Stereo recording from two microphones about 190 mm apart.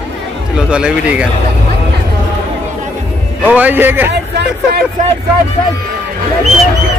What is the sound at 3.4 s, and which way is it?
Speech, 10° right (ahead or behind).